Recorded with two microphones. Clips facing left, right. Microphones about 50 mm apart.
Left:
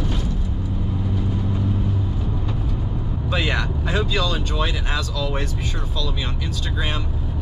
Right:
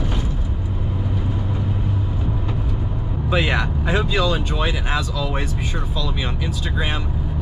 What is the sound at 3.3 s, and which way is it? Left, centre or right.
Vehicle, centre.